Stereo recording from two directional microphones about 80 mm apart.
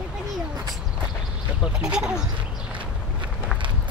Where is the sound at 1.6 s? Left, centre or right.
Centre.